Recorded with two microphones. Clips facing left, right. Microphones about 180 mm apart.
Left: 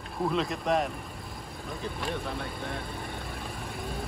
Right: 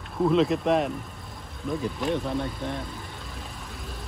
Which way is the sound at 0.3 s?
Centre (ahead or behind).